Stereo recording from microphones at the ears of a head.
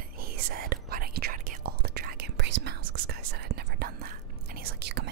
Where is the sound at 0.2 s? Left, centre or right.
Right.